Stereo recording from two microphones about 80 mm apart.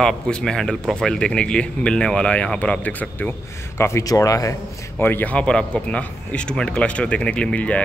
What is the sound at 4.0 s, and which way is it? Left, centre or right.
Speech, left.